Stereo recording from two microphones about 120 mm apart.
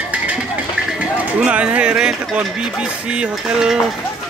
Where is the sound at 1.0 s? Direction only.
10° right (ahead or behind).